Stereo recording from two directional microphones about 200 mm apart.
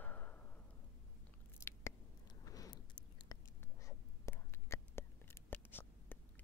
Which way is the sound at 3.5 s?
10° left (ahead or behind).